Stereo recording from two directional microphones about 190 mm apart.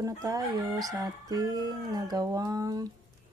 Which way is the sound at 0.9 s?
20° right (ahead or behind).